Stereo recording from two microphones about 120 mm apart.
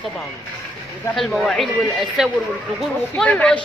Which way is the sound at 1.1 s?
Centre (ahead or behind).